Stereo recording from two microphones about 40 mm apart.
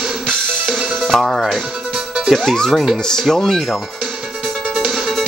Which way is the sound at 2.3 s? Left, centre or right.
Centre.